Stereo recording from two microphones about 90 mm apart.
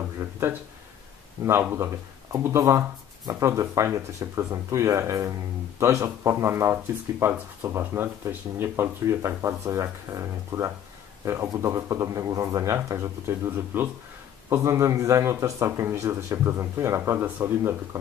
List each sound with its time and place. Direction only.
0.2 s a sound: 25° right (ahead or behind)
1.4 s speech: 30° right (ahead or behind)
13.7 s speech: 20° right (ahead or behind)
14.5 s speech: 35° right (ahead or behind)